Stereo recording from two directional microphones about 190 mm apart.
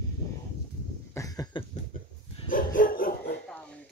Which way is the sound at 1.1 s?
20° left (ahead or behind).